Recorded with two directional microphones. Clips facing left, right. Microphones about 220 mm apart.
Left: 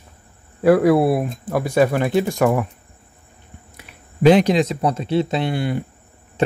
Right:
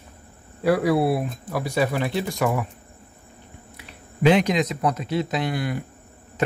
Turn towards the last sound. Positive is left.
turn(degrees=30)  # may be behind; listen again after turning